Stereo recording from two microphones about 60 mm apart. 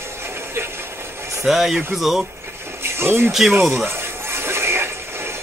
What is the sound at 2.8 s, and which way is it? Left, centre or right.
Music, right.